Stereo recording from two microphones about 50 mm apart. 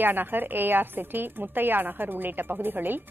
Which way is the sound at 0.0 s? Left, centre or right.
Right.